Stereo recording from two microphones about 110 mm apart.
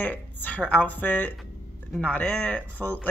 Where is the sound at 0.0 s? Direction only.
15° left (ahead or behind).